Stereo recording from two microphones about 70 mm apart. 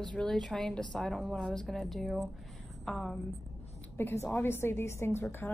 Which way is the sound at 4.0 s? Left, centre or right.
Left.